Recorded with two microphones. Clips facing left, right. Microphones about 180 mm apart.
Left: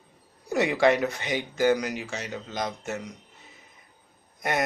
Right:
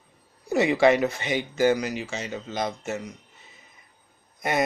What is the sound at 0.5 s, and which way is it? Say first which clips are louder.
Speech: right 2 dB; 5° right (ahead or behind).